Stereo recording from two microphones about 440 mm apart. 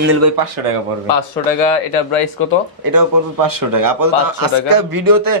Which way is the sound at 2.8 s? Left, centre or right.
Right.